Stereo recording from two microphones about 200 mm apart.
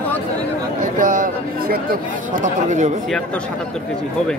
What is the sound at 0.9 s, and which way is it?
Speech, 40° right (ahead or behind).